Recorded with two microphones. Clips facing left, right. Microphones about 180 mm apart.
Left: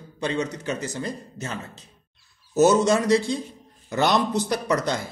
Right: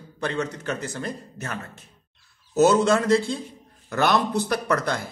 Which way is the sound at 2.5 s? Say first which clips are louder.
Even; 15° left (ahead or behind).